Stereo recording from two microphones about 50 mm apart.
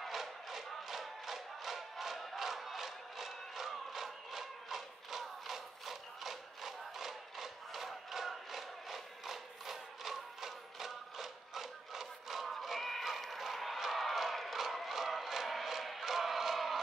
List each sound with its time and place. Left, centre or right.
0.0 s battle cry: centre